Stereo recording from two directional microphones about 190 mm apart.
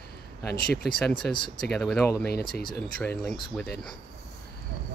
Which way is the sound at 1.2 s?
5° left (ahead or behind).